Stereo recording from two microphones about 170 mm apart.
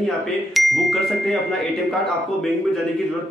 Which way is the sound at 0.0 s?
Centre (ahead or behind).